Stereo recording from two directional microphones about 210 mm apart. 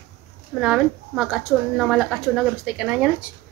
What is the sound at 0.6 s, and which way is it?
A woman's voice, centre (ahead or behind).